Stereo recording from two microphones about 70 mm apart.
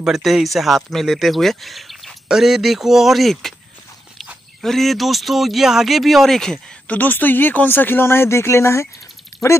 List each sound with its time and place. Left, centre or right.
0.0 s speech: centre
4.6 s speech: centre
6.9 s speech: left